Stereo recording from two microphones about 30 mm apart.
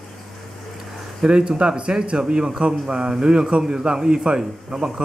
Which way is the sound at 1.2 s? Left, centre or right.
Right.